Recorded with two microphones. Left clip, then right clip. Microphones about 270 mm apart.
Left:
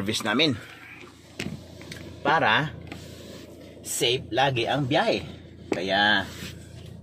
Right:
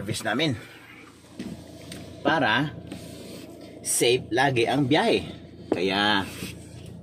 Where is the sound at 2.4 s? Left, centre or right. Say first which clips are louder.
Left 2 dB; left.